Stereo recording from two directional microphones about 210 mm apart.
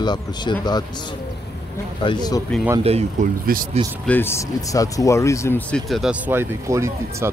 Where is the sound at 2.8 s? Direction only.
30° right (ahead or behind).